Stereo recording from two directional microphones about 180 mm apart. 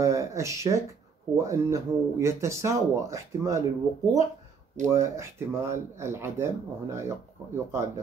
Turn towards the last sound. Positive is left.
turn(degrees=-15)  # may be behind; listen again after turning